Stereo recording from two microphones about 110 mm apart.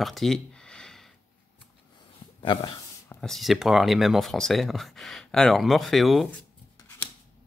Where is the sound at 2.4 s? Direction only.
50° left (ahead or behind).